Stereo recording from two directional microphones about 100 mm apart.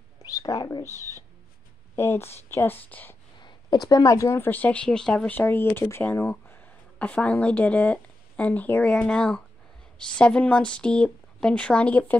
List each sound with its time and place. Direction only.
0.2 s speech: 35° left (ahead or behind); by 3.2 s 20° left (ahead or behind)
3.3 s speech: 50° left (ahead or behind); by 6.6 s 25° left (ahead or behind)
7.0 s speech: 15° left (ahead or behind)